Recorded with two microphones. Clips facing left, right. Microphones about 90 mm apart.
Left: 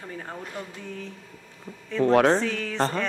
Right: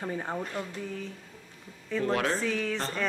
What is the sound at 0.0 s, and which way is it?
Speech, 25° right (ahead or behind).